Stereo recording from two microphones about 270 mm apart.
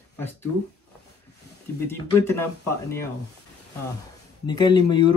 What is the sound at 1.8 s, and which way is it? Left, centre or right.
Speech, centre.